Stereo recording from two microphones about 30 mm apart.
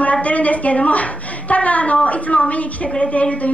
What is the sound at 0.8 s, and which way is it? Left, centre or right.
A woman's voice, left.